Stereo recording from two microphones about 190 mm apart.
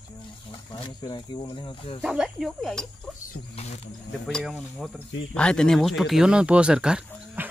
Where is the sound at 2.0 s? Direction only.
Centre (ahead or behind).